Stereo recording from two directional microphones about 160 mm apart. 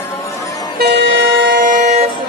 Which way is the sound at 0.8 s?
90° right.